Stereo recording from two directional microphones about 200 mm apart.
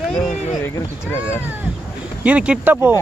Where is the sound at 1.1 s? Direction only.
15° left (ahead or behind).